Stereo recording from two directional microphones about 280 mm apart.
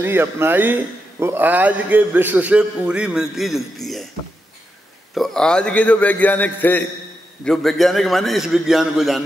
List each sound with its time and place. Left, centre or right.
0.0 s a man's voice: centre
5.1 s a man's voice: centre